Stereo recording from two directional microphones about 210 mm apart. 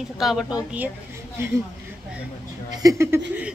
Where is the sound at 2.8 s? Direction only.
15° right (ahead or behind).